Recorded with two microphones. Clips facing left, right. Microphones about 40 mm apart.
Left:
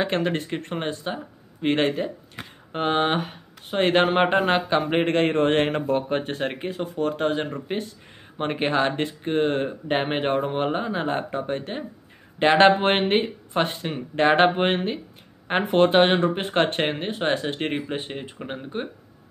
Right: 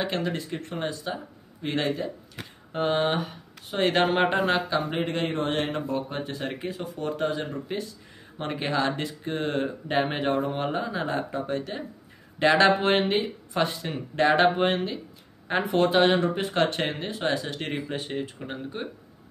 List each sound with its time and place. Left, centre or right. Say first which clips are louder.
0.0 s speech: left 4 dB; left
5.0 s speech: left 7 dB; left